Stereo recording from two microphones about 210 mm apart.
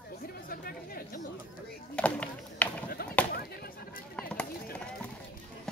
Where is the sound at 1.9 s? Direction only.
5° left (ahead or behind).